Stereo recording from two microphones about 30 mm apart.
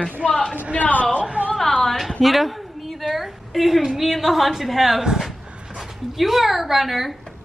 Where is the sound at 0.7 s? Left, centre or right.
Left.